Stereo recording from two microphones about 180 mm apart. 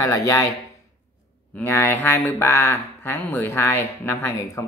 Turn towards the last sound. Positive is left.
turn(degrees=15)  # may be behind; listen again after turning